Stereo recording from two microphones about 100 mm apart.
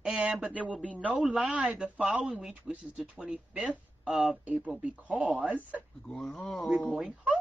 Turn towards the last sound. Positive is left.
turn(degrees=-10)  # may be behind; listen again after turning